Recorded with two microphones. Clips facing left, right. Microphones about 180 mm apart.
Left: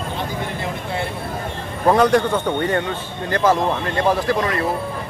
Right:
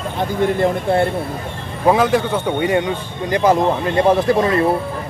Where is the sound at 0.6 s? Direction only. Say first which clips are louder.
Right 10 dB; 50° right (ahead or behind).